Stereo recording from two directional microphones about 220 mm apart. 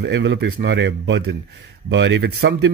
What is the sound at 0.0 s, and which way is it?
Speech, 55° right (ahead or behind).